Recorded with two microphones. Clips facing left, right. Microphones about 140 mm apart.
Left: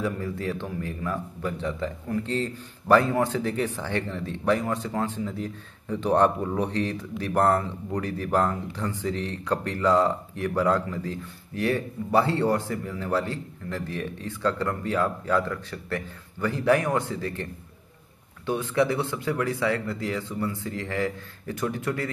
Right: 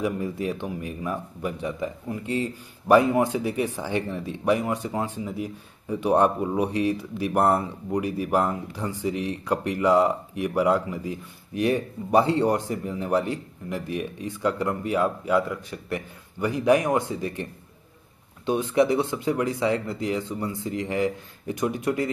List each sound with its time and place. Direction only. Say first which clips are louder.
0.0 s a man's voice: right 2 dB; 15° right (ahead or behind)